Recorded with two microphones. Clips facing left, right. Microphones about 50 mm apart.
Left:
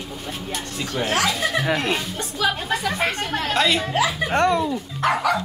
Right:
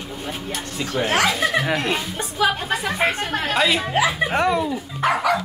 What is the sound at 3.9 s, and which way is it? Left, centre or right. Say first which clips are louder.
Speech: right 2 dB; centre.